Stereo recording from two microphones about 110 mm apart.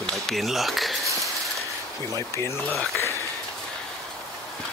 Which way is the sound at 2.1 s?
25° left (ahead or behind).